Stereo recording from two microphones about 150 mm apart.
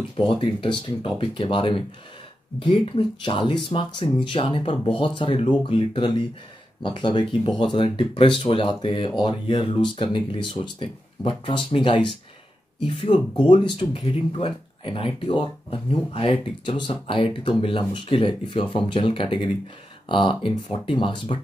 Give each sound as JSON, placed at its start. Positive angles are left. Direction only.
{"t": 0.2, "sound": "speech", "side_deg": 35}